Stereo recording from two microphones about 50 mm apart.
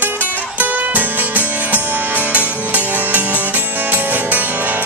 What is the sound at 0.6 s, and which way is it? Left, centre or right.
Music, right.